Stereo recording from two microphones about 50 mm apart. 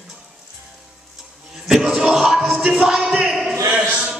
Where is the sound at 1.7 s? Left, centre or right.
Centre.